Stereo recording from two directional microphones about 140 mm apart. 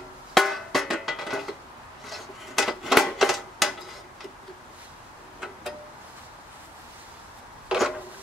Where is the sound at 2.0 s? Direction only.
Centre (ahead or behind).